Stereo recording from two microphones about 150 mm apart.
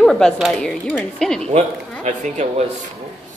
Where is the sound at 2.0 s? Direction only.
50° right (ahead or behind).